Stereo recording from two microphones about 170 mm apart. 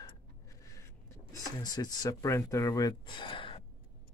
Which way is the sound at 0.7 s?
20° left (ahead or behind).